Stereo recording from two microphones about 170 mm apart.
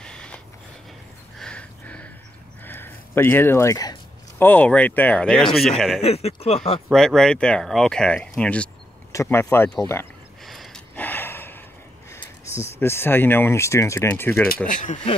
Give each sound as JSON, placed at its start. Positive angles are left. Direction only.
{"t": 0.0, "sound": "a sound", "side_deg": 5}
{"t": 1.4, "sound": "a sound", "side_deg": 5}
{"t": 4.4, "sound": "speech", "side_deg": 10}
{"t": 5.9, "sound": "speech", "side_deg": 35}
{"t": 6.9, "sound": "speech", "side_deg": 5}
{"t": 10.4, "sound": "gasp", "side_deg": 0}
{"t": 12.8, "sound": "speech", "side_deg": 15}
{"t": 14.7, "sound": "speech", "side_deg": 50}